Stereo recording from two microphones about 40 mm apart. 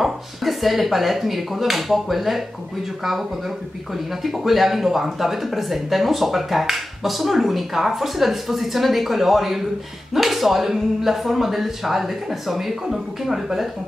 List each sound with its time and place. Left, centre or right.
0.0 s speech: centre